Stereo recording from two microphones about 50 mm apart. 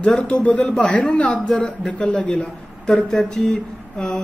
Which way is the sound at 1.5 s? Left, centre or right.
Centre.